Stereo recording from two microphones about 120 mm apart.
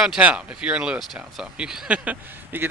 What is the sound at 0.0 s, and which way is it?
Speech, 10° right (ahead or behind).